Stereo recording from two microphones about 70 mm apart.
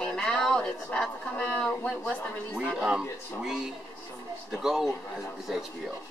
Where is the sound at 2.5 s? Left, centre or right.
Centre.